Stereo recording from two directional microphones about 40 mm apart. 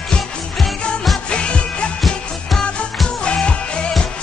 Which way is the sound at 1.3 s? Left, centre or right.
Left.